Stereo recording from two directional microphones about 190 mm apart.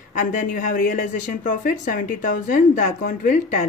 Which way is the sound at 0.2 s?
40° left (ahead or behind).